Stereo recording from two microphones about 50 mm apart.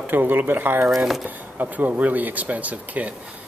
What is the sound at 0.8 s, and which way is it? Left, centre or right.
Speech, centre.